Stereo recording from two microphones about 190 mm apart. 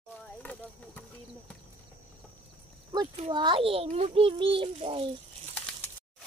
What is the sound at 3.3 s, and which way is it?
A child's voice, 25° right (ahead or behind).